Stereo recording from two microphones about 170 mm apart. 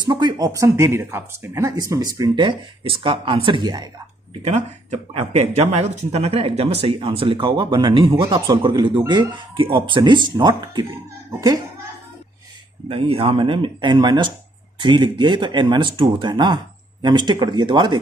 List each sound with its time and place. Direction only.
0.0 s speech: 25° right (ahead or behind)
4.5 s speech: 40° right (ahead or behind)
12.8 s speech: 35° right (ahead or behind)